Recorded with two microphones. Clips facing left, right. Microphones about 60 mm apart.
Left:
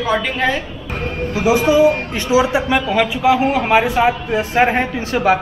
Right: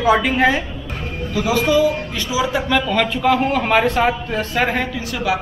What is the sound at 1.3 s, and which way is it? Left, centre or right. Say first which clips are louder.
A man's voice: left 3 dB; centre.